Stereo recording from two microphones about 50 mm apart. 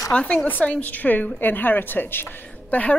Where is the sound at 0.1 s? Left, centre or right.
Left.